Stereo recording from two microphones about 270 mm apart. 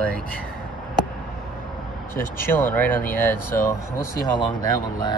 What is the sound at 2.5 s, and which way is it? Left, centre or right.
Speech, centre.